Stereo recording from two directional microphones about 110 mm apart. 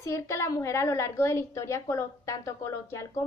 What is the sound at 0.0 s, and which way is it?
A woman's voice, 25° left (ahead or behind).